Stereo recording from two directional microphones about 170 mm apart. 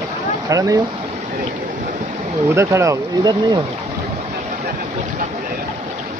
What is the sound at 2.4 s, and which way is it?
Speech, 15° right (ahead or behind).